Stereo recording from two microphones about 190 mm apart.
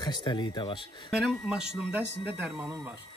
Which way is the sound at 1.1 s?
Centre (ahead or behind).